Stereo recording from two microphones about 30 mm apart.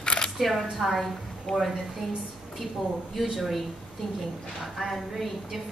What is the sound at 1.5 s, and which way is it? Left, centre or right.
Speech, centre.